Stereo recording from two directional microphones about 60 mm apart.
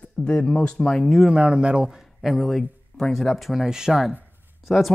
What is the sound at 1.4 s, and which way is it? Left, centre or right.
Speech, centre.